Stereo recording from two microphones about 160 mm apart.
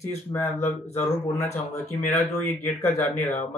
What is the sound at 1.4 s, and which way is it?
A man's voice, 15° left (ahead or behind).